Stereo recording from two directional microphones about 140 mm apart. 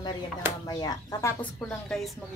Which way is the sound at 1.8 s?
5° left (ahead or behind).